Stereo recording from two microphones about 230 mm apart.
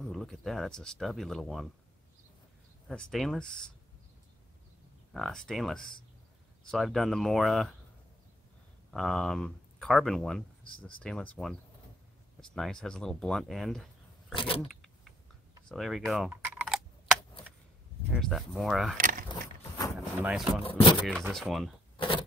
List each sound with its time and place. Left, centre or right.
0.0 s speech: centre
2.9 s speech: centre
5.1 s speech: centre
8.9 s speech: centre
14.3 s a sound: left
14.7 s keys jangling: centre
15.7 s typing: centre
18.1 s speech: centre
18.9 s keys jangling: right
20.2 s speech: centre
20.6 s a sound: left
21.3 s speech: centre
21.9 s a sound: left